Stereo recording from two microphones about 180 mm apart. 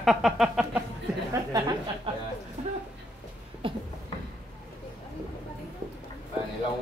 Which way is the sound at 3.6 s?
30° right (ahead or behind).